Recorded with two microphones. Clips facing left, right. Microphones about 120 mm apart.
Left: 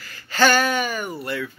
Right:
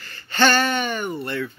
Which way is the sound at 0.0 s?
5° left (ahead or behind).